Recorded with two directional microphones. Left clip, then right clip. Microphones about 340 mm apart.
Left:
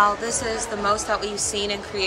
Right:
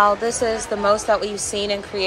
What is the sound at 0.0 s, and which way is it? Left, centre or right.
A woman's voice, centre.